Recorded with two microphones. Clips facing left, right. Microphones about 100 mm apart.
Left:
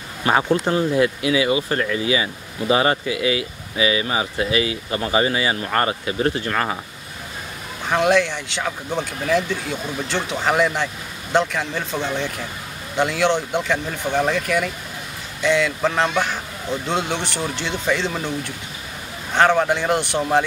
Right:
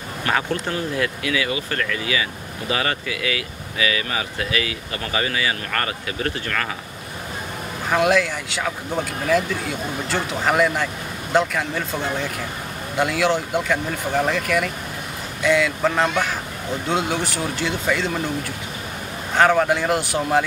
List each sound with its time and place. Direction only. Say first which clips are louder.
0.2 s speech: left 5 dB; 20° left (ahead or behind)
7.9 s speech: left 1 dB; 5° right (ahead or behind)
19.3 s speech: even; 5° right (ahead or behind)